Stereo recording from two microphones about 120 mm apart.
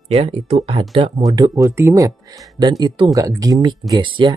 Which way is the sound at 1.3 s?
30° right (ahead or behind).